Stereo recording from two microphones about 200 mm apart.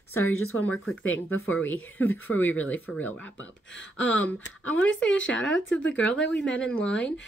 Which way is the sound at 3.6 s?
65° left (ahead or behind).